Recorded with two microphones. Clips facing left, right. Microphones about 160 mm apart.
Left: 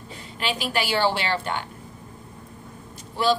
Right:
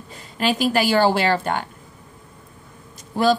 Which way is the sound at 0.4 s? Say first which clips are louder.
Right 7 dB; 45° right (ahead or behind).